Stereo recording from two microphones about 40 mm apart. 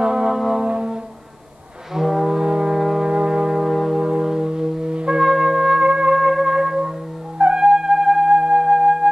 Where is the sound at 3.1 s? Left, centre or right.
Right.